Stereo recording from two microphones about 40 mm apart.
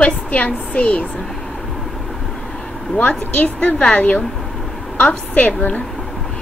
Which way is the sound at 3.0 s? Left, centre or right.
Left.